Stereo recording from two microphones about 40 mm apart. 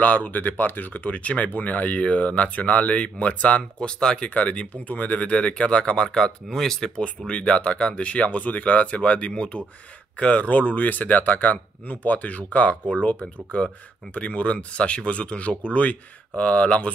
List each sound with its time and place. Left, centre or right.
0.0 s speech: left
5.3 s speech: left; by 6.9 s centre
7.0 s speech: left